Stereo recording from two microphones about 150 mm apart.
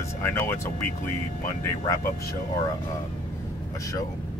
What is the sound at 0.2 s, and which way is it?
Speech, 15° left (ahead or behind).